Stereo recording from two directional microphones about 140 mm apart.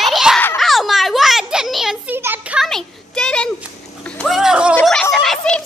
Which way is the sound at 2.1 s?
15° right (ahead or behind).